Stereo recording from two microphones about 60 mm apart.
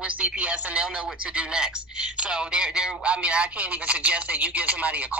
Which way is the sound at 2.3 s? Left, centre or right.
Centre.